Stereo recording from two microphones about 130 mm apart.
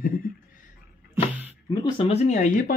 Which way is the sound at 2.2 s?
75° left (ahead or behind).